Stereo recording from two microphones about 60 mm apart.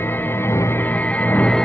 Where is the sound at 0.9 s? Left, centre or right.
Left.